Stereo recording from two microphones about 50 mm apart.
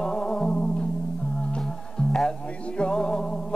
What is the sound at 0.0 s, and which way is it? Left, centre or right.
Music, centre.